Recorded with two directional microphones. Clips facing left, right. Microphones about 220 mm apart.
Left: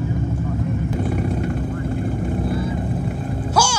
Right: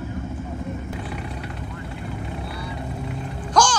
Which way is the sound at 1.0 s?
45° left (ahead or behind).